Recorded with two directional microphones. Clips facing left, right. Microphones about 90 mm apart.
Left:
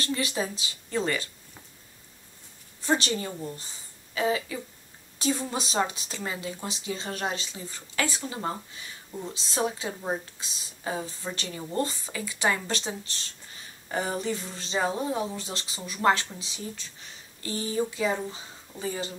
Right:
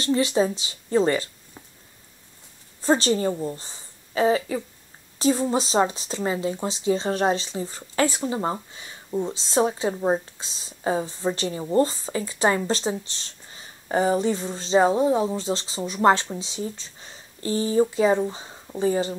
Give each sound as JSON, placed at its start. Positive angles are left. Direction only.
{"t": 0.0, "sound": "speech", "side_deg": -25}
{"t": 2.8, "sound": "a woman's voice", "side_deg": -35}